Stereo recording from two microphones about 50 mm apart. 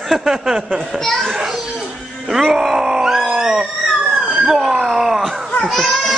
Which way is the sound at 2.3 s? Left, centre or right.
Centre.